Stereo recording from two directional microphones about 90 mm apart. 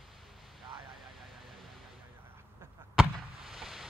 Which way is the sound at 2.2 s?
25° right (ahead or behind).